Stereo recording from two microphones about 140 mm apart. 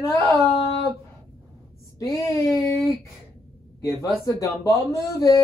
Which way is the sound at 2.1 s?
20° left (ahead or behind).